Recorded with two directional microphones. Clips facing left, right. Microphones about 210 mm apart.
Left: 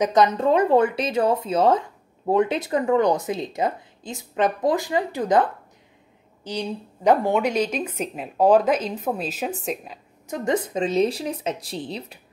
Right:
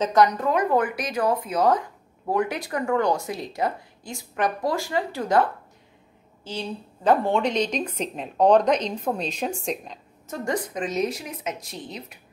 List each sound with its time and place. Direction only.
0.0 s a woman's voice: 20° left (ahead or behind); by 9.9 s 5° left (ahead or behind)
10.2 s speech: 20° left (ahead or behind)